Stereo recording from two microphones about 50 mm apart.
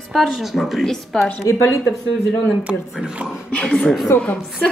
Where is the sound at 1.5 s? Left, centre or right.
Left.